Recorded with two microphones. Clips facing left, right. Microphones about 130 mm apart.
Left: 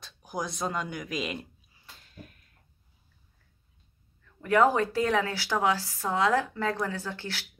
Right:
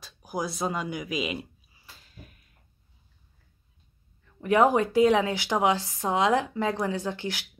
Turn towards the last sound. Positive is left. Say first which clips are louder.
# right 5 dB
turn(degrees=-15)  # may be behind; listen again after turning